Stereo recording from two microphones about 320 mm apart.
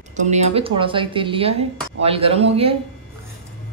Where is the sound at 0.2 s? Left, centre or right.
Right.